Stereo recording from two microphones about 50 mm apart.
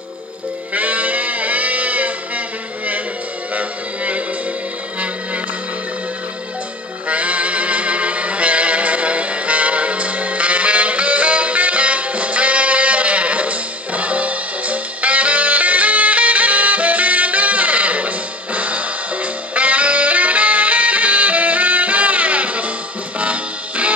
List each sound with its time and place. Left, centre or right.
0.7 s music: right
3.5 s music: right
7.1 s music: right